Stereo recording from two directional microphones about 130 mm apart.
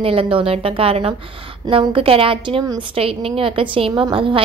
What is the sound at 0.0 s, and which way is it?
A woman's voice, 45° right (ahead or behind).